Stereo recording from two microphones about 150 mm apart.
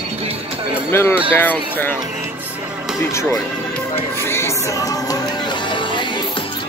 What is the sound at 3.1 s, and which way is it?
Speech, 20° left (ahead or behind).